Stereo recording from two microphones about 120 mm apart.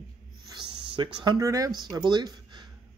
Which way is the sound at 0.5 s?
45° right (ahead or behind).